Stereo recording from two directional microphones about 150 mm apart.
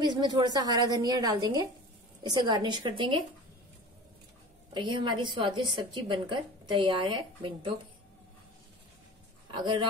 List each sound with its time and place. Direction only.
0.0 s a woman's voice: 30° right (ahead or behind)
4.7 s a woman's voice: 30° right (ahead or behind)
9.5 s speech: 30° right (ahead or behind)